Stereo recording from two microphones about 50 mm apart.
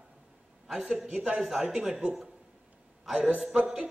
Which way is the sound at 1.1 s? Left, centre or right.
Right.